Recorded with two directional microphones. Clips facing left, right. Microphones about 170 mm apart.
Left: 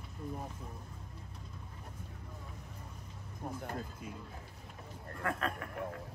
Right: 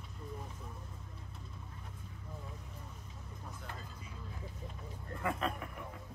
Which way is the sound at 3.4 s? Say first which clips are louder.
Left 9 dB; 55° left (ahead or behind).